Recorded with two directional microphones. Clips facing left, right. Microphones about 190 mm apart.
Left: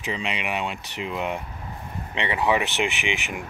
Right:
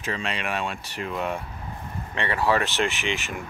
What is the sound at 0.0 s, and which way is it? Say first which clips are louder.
Speech: even; 15° left (ahead or behind).